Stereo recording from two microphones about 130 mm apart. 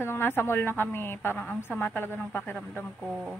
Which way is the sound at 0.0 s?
15° left (ahead or behind).